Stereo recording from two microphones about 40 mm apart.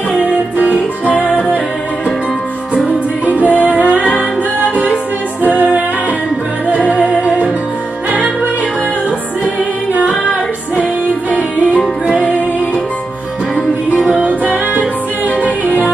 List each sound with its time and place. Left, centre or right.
0.2 s music: right
3.3 s music: right